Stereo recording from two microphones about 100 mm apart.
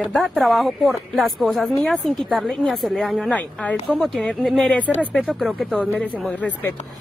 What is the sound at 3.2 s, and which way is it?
Speech, 15° left (ahead or behind).